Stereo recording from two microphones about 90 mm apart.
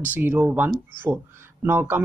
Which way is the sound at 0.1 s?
20° right (ahead or behind).